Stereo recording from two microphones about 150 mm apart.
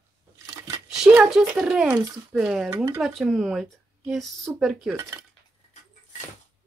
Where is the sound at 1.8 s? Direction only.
15° right (ahead or behind).